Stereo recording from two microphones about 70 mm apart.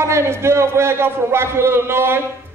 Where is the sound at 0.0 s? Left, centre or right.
Right.